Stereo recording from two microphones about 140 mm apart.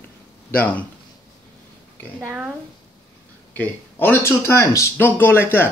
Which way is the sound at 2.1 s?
10° right (ahead or behind).